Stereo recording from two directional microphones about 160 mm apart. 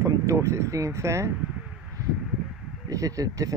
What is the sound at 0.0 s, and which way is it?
Speech, 20° right (ahead or behind).